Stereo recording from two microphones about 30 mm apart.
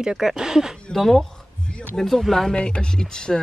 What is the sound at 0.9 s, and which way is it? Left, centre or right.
Speech, centre.